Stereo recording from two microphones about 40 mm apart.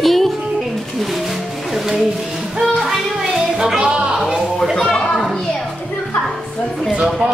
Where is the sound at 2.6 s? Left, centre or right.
Centre; by 4.1 s right.